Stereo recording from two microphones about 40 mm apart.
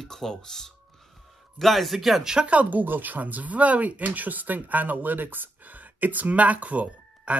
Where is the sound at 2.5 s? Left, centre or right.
Right.